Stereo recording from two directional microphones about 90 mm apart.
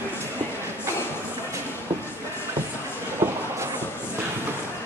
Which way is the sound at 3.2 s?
35° right (ahead or behind).